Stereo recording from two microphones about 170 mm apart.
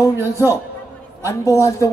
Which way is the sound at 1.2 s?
20° left (ahead or behind).